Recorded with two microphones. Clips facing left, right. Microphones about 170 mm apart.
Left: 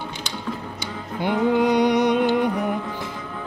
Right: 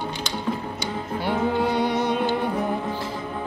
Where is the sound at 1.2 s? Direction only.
20° left (ahead or behind).